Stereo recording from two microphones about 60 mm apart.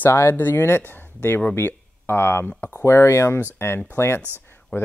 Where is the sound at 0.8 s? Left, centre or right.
Left.